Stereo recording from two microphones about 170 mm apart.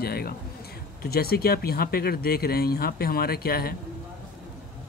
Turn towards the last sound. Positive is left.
turn(degrees=65)  # may be behind; listen again after turning